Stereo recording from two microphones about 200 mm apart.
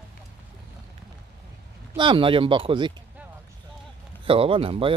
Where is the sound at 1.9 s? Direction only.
25° right (ahead or behind).